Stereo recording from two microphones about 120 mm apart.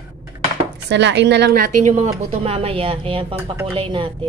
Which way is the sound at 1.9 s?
65° right (ahead or behind).